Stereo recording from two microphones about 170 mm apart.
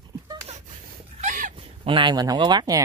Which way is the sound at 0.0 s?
25° right (ahead or behind).